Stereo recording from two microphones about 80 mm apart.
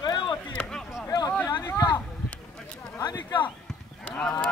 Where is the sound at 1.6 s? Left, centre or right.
Left.